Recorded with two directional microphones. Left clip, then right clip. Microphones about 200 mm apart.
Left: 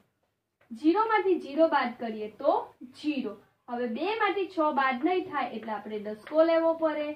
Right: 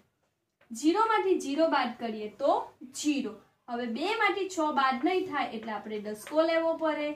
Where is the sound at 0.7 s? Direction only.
10° right (ahead or behind).